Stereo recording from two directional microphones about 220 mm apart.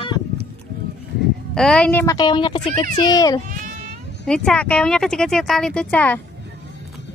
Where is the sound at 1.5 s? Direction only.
5° left (ahead or behind).